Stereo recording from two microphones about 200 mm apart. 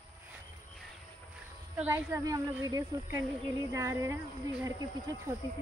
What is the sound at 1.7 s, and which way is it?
Speech, 15° right (ahead or behind).